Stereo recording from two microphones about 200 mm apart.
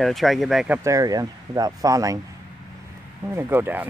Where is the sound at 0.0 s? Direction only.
Centre (ahead or behind).